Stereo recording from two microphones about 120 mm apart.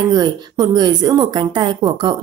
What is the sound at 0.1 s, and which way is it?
Speech, 35° right (ahead or behind).